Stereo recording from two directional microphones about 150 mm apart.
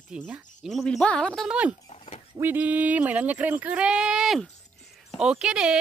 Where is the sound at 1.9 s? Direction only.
45° left (ahead or behind).